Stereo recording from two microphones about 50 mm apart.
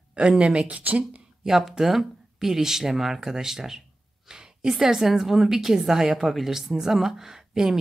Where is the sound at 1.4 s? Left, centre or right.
Centre.